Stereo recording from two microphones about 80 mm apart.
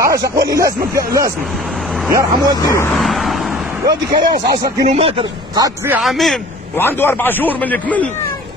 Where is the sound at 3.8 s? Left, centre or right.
Right.